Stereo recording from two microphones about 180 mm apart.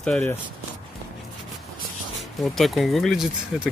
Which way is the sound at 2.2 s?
Centre (ahead or behind).